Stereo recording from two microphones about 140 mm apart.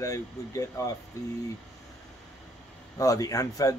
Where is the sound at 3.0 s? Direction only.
25° left (ahead or behind).